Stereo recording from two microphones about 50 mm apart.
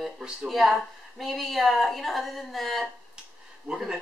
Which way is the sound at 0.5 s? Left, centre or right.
Centre.